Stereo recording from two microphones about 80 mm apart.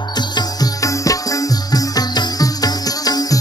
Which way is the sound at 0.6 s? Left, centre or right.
Left.